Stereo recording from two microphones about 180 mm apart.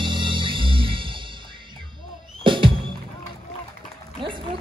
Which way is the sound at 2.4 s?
25° right (ahead or behind).